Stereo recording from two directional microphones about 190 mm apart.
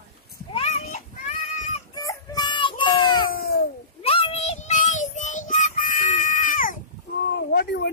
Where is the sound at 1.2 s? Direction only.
40° left (ahead or behind).